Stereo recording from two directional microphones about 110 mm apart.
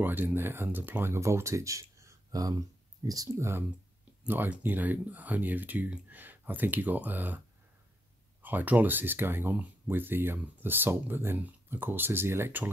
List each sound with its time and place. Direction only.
0.0 s speech: 20° right (ahead or behind)